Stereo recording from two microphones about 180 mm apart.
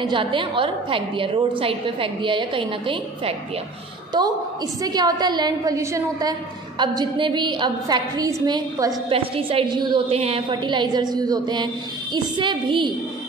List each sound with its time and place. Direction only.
0.1 s a woman's voice: 30° right (ahead or behind)